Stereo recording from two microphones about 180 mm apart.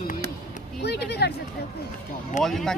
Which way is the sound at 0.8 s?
65° left (ahead or behind).